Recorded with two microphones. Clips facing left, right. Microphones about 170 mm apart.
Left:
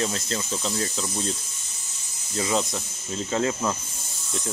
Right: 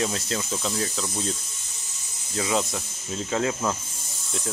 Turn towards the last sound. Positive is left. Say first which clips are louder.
# even
turn(degrees=0)  # may be behind; listen again after turning